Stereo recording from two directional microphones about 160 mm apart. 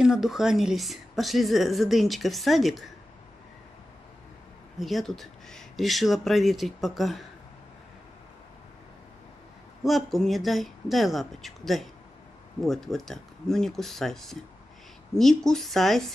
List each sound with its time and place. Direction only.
0.0 s a woman's voice: centre (ahead or behind)
4.7 s a woman's voice: centre (ahead or behind)
9.8 s a woman's voice: centre (ahead or behind)